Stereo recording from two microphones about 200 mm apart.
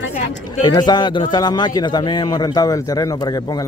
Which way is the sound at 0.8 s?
20° left (ahead or behind).